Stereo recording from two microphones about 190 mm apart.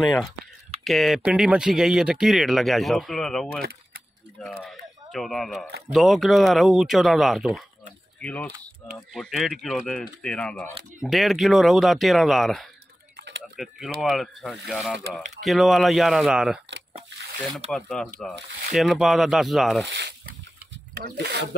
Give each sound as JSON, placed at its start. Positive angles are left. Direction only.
{"t": 0.0, "sound": "speech", "side_deg": 0}
{"t": 13.1, "sound": "a sound", "side_deg": -65}
{"t": 13.6, "sound": "speech", "side_deg": 0}
{"t": 17.1, "sound": "a sound", "side_deg": -65}
{"t": 17.6, "sound": "speech", "side_deg": 5}
{"t": 19.9, "sound": "speech", "side_deg": -70}